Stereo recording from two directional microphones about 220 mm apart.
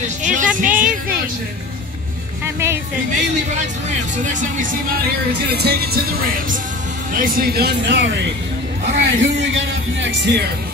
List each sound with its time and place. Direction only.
0.2 s speech: 35° right (ahead or behind)
0.7 s speech: 5° right (ahead or behind)
2.4 s speech: 10° right (ahead or behind)
4.2 s speech: 35° right (ahead or behind)
5.5 s speech: 45° right (ahead or behind)
7.2 s a man's voice: 40° right (ahead or behind)